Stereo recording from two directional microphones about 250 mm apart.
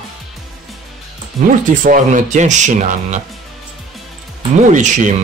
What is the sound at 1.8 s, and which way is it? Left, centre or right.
Speech, right.